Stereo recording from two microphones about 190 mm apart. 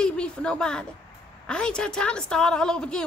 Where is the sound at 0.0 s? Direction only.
5° left (ahead or behind).